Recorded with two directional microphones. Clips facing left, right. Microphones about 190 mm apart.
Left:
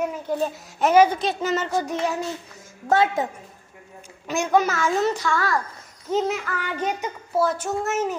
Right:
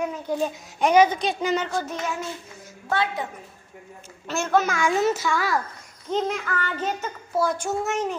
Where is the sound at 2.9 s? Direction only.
45° left (ahead or behind).